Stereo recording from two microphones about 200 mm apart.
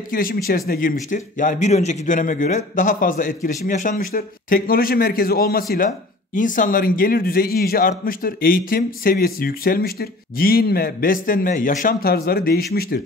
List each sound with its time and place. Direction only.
0.1 s speech: 45° left (ahead or behind)